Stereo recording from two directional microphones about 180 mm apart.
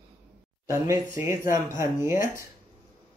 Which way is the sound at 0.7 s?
15° right (ahead or behind).